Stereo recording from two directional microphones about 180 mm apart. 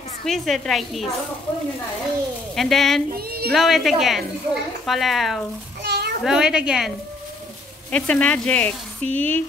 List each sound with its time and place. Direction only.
0.2 s a woman's voice: centre (ahead or behind)
2.5 s a woman's voice: centre (ahead or behind)
3.1 s speech: 60° right (ahead or behind)
3.5 s a woman's voice: centre (ahead or behind)
5.8 s a sound: 65° right (ahead or behind)
6.2 s a woman's voice: 5° right (ahead or behind)
7.9 s speech: 5° left (ahead or behind)